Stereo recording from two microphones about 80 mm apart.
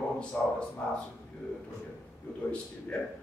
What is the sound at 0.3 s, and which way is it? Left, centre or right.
Speech, left.